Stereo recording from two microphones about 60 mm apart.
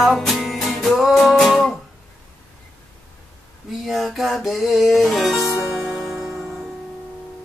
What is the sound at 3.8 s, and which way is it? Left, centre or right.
Music, centre.